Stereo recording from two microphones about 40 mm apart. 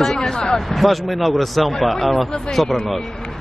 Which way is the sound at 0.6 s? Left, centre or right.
Centre.